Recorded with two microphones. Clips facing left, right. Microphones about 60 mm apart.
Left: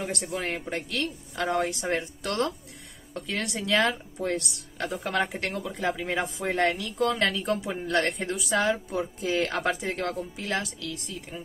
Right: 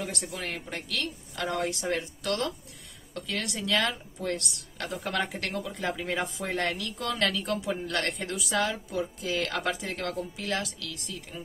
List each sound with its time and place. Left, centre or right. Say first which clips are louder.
0.0 s a woman's voice: left 4 dB; left
3.2 s a woman's voice: left 2 dB; left